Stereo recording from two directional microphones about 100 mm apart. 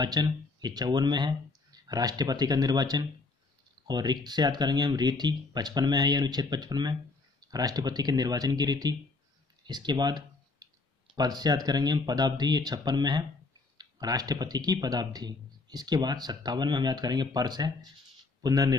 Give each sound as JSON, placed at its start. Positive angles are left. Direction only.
{"t": 0.0, "sound": "speech", "side_deg": -45}
{"t": 9.7, "sound": "clicking", "side_deg": -45}
{"t": 11.1, "sound": "speech", "side_deg": -45}